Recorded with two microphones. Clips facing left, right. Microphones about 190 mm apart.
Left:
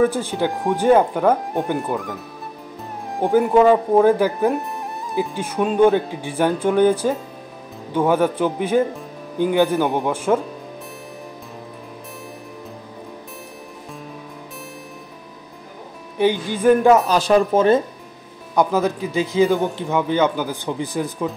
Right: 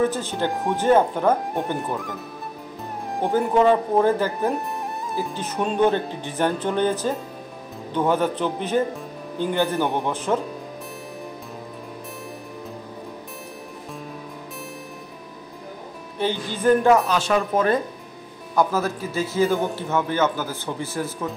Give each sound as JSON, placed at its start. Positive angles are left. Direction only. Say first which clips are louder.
{"t": 0.0, "sound": "speech", "louder": "left 4 dB", "side_deg": 10}
{"t": 0.5, "sound": "speech", "louder": "left 3 dB", "side_deg": 0}
{"t": 0.7, "sound": "speech", "louder": "left 3 dB", "side_deg": 15}
{"t": 1.8, "sound": "speech", "louder": "left 3 dB", "side_deg": 0}
{"t": 4.4, "sound": "speech", "louder": "left 4 dB", "side_deg": 0}
{"t": 16.2, "sound": "speech", "louder": "left 6 dB", "side_deg": 15}
{"t": 17.1, "sound": "speech", "louder": "left 5 dB", "side_deg": 35}